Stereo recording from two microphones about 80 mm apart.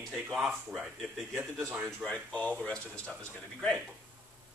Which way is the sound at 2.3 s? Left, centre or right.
Centre.